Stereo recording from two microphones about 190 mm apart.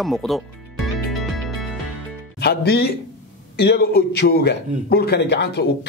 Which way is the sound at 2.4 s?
55° left (ahead or behind).